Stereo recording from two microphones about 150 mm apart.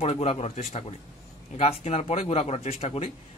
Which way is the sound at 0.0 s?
45° left (ahead or behind).